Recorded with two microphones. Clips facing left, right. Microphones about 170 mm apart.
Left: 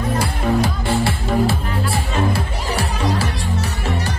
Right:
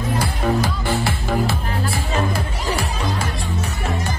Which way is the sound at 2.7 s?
70° left (ahead or behind).